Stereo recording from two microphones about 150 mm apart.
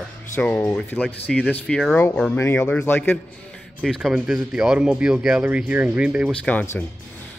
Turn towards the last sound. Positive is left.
turn(degrees=15)  # may be behind; listen again after turning